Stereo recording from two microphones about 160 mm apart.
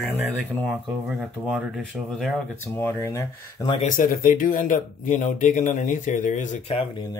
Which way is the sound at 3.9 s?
60° left (ahead or behind).